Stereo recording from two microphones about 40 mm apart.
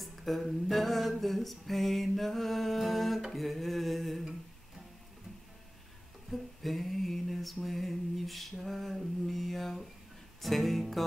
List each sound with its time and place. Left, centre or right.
0.0 s a sound: centre
1.2 s mantra: centre
6.3 s mantra: centre